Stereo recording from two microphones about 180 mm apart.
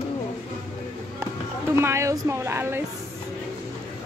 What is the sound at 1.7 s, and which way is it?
Speech, 15° right (ahead or behind).